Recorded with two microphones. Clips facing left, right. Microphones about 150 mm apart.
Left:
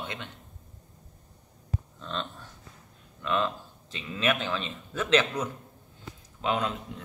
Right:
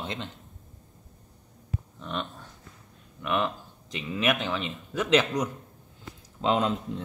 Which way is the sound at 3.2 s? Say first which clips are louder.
Even; 15° right (ahead or behind).